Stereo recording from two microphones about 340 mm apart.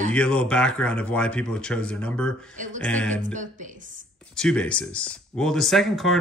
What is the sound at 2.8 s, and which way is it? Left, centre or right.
Speech, centre.